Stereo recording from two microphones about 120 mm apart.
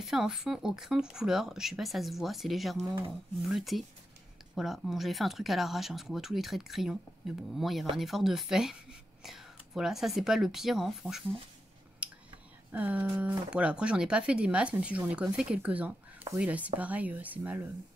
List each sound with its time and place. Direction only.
0.0 s speech: 5° right (ahead or behind)
12.0 s a sound: 10° right (ahead or behind)
12.7 s speech: 15° right (ahead or behind)